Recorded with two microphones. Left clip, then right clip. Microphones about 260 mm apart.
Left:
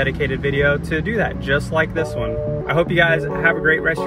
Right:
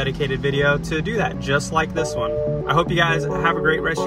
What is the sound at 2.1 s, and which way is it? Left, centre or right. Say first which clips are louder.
Speech: right 1 dB; centre.